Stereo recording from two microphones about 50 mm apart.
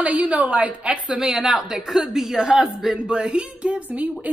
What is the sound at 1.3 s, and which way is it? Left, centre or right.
A woman's voice, centre.